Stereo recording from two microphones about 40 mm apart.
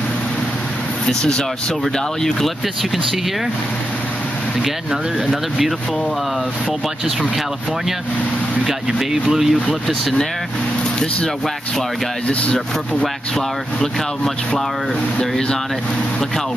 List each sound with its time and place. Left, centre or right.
1.0 s speech: centre
2.4 s speech: centre
9.3 s speech: centre
10.8 s vehicle: left
15.1 s speech: centre